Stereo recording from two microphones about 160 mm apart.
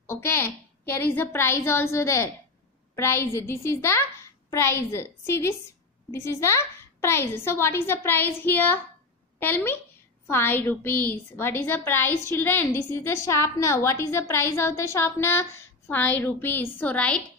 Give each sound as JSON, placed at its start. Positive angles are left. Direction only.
{"t": 0.0, "sound": "a woman's voice", "side_deg": 15}